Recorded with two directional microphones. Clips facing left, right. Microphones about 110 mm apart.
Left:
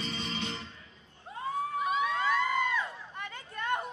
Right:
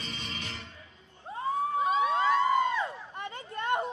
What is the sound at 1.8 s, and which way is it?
Crowd, 30° right (ahead or behind).